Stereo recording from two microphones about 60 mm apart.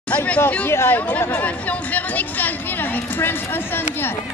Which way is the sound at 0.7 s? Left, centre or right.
Left.